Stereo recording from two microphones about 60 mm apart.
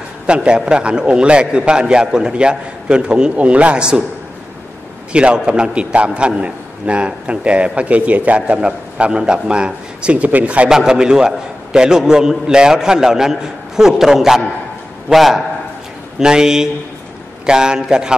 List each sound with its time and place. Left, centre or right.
0.3 s a man's voice: centre
5.1 s a man's voice: centre
10.7 s a man's voice: centre